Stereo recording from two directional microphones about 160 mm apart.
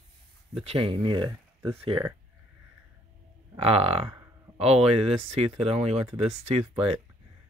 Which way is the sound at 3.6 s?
40° right (ahead or behind).